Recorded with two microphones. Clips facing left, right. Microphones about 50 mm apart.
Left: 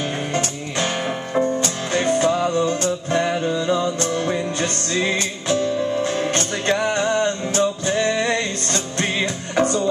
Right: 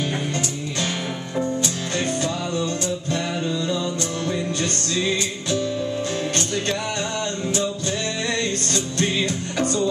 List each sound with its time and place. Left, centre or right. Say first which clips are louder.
1.3 s music: left 4 dB; left